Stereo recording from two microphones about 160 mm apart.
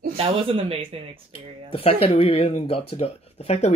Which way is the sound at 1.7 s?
35° left (ahead or behind).